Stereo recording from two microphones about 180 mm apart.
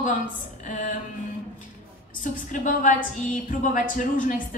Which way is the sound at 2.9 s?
45° left (ahead or behind).